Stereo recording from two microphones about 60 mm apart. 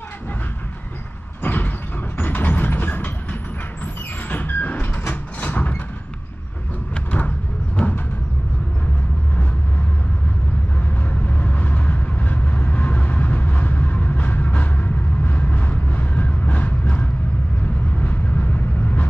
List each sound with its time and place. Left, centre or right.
1.4 s sliding door: left
2.1 s vehicle: left
4.3 s vehicle: left
6.9 s a sound: left
11.2 s train: left
17.9 s vehicle: left